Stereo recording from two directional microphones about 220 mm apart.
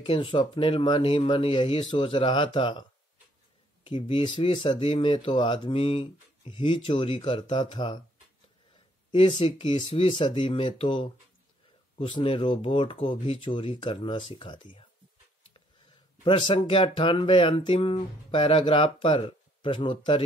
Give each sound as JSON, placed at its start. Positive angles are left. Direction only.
{"t": 0.0, "sound": "speech", "side_deg": 25}
{"t": 3.8, "sound": "speech", "side_deg": 25}
{"t": 9.1, "sound": "speech", "side_deg": 25}
{"t": 16.3, "sound": "speech", "side_deg": 25}